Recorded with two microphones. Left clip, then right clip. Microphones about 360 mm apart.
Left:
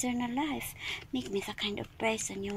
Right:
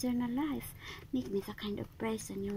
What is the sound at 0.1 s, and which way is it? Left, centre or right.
Speech, left.